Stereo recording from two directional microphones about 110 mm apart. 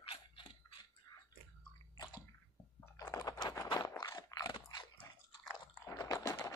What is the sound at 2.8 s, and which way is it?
Chewing, 30° left (ahead or behind).